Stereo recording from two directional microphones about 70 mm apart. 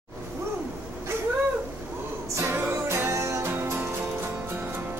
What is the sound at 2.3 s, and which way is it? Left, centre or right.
Music, right.